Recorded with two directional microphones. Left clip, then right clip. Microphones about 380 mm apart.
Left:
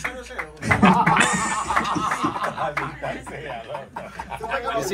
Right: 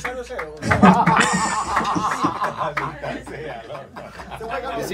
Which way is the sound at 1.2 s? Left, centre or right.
Centre.